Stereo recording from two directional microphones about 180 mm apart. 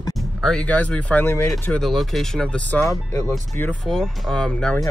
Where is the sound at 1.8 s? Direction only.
Centre (ahead or behind).